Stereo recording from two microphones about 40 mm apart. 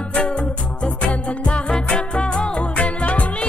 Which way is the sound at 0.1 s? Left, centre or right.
Left.